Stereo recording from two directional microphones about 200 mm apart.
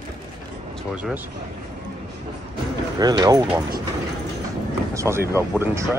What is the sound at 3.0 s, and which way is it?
Speech, 20° right (ahead or behind).